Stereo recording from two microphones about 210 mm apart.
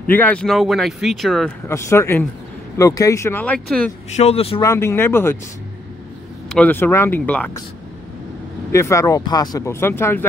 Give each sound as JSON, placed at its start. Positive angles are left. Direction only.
{"t": 0.0, "sound": "speech", "side_deg": 10}
{"t": 1.7, "sound": "speech", "side_deg": 15}
{"t": 4.2, "sound": "speech", "side_deg": 30}
{"t": 4.6, "sound": "speech", "side_deg": 15}
{"t": 6.5, "sound": "speech", "side_deg": 10}
{"t": 8.7, "sound": "speech", "side_deg": 15}